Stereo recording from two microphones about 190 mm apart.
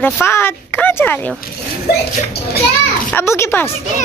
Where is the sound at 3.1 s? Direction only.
15° left (ahead or behind).